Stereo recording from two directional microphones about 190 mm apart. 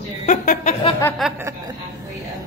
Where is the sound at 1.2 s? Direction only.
Centre (ahead or behind).